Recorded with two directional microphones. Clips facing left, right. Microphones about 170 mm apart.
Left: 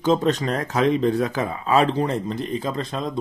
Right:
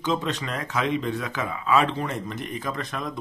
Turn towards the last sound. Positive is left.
turn(degrees=25)  # may be behind; listen again after turning